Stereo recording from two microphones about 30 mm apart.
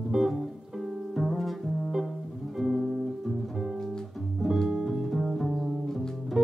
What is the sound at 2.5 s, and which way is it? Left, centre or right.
Music, centre.